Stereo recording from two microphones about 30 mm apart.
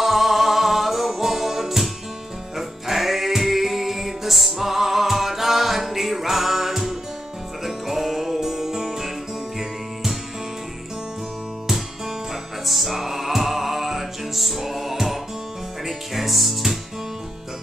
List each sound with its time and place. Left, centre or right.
0.0 s music: centre
12.6 s music: centre